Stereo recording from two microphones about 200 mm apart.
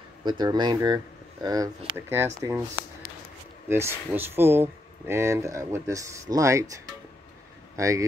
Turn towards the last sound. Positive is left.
turn(degrees=-15)  # may be behind; listen again after turning